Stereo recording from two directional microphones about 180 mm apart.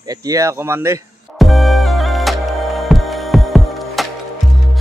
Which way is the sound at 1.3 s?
Centre (ahead or behind).